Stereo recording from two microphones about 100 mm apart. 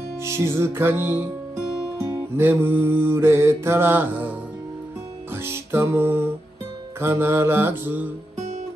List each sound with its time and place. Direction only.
0.2 s mantra: 25° right (ahead or behind)
2.0 s music: 25° right (ahead or behind)
7.0 s mantra: 25° right (ahead or behind)